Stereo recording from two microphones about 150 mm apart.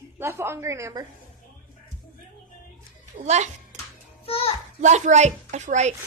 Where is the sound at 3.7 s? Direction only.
55° right (ahead or behind).